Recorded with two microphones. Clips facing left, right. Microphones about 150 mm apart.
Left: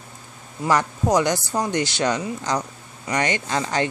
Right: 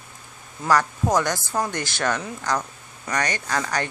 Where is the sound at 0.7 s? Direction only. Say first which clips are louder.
Left 1 dB; 20° left (ahead or behind).